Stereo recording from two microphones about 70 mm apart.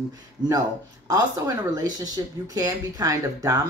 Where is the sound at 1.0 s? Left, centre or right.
Right.